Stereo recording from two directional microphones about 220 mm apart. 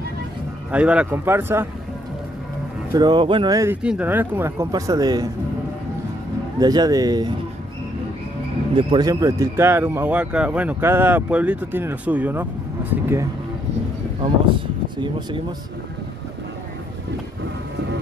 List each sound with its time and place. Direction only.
0.7 s speech: 5° right (ahead or behind)
2.9 s speech: 20° right (ahead or behind)
3.8 s speech: 5° right (ahead or behind)
6.6 s speech: 20° right (ahead or behind)
8.7 s speech: 20° right (ahead or behind)
15.0 s speech: 20° right (ahead or behind)